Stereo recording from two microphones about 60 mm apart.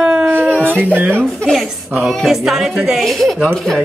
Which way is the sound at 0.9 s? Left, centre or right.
Right.